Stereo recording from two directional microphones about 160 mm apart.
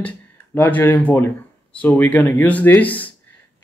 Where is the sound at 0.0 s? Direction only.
10° left (ahead or behind).